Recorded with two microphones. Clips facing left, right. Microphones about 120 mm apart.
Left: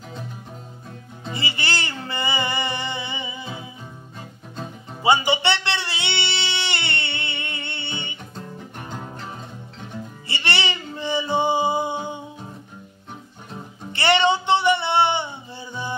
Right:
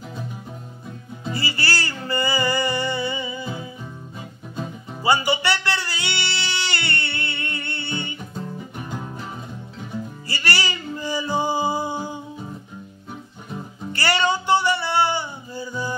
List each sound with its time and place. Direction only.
1.3 s music: 20° left (ahead or behind)
5.0 s music: 20° left (ahead or behind)
8.5 s music: 5° right (ahead or behind)
10.2 s music: 25° left (ahead or behind)
13.9 s music: 25° left (ahead or behind)